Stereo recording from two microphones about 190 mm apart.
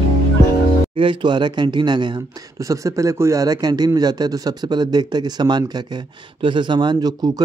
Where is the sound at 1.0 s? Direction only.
25° right (ahead or behind).